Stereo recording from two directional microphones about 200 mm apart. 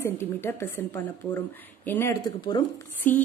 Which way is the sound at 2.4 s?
20° left (ahead or behind).